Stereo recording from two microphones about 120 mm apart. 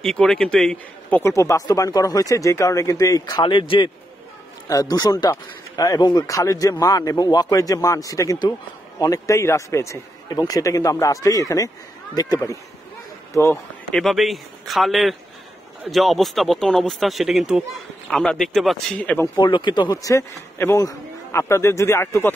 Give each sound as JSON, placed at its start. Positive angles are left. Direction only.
{"t": 0.0, "sound": "speech", "side_deg": 5}
{"t": 1.1, "sound": "speech", "side_deg": 25}
{"t": 4.6, "sound": "speech", "side_deg": 30}
{"t": 13.9, "sound": "speech", "side_deg": 0}
{"t": 19.2, "sound": "speech", "side_deg": 35}